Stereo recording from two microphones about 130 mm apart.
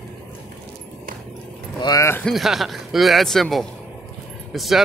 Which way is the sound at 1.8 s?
30° left (ahead or behind).